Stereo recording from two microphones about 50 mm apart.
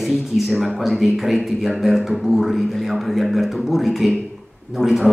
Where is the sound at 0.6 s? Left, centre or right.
Centre.